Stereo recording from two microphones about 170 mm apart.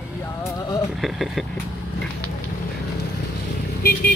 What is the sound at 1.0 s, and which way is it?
Speech, centre (ahead or behind).